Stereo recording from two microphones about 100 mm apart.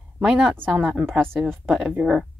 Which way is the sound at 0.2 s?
5° right (ahead or behind).